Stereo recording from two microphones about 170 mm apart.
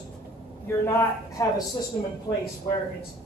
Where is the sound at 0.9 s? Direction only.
20° left (ahead or behind).